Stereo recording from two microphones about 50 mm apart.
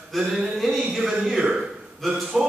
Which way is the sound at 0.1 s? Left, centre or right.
Centre.